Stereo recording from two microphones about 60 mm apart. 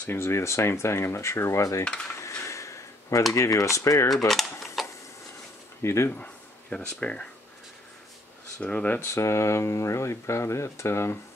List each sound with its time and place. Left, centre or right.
0.0 s speech: left
2.1 s a sound: left
3.3 s speech: left
4.3 s speech: centre
5.8 s speech: left
6.1 s speech: left
8.5 s speech: left
9.0 s speech: left